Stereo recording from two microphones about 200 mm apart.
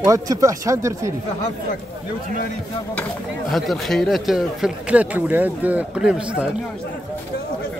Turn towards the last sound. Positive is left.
turn(degrees=-5)  # may be behind; listen again after turning